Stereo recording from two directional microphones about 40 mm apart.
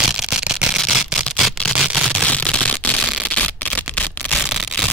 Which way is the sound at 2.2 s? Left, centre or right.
Left.